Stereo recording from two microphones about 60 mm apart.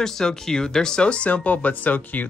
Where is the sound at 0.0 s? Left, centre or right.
Centre.